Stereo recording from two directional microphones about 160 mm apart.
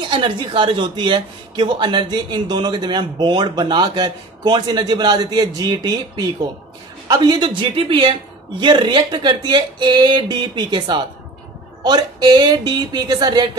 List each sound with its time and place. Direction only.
0.1 s speech: 30° right (ahead or behind)